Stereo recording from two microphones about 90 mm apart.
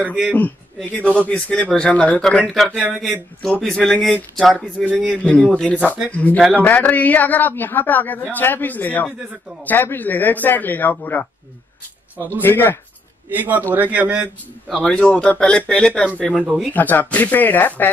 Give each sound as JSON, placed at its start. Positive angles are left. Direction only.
{"t": 0.0, "sound": "a man's voice", "side_deg": -10}
{"t": 0.8, "sound": "speech", "side_deg": 15}
{"t": 5.2, "sound": "speech", "side_deg": 15}
{"t": 12.4, "sound": "speech", "side_deg": 25}
{"t": 13.3, "sound": "a man's voice", "side_deg": -20}
{"t": 14.7, "sound": "speech", "side_deg": 5}
{"t": 16.3, "sound": "speech", "side_deg": 0}
{"t": 16.7, "sound": "speech", "side_deg": 20}